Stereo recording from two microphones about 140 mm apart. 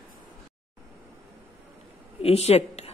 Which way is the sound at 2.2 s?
45° left (ahead or behind).